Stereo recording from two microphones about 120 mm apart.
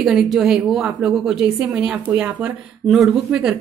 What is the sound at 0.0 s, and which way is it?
A woman's voice, 5° right (ahead or behind).